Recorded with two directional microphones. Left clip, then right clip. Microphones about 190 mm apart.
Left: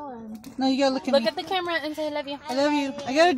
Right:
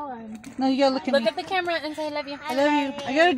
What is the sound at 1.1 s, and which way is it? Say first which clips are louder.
A woman's voice: even; 40° left (ahead or behind).